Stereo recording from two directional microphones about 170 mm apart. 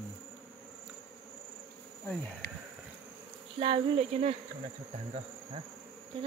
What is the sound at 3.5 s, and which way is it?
Speech, 35° right (ahead or behind).